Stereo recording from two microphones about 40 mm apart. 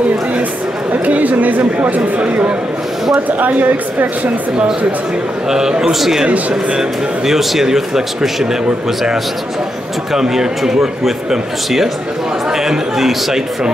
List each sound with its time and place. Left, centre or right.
1.0 s speech: right
3.3 s speech: right
5.5 s a man's voice: centre
6.5 s speech: right
7.2 s a man's voice: centre
10.1 s a man's voice: centre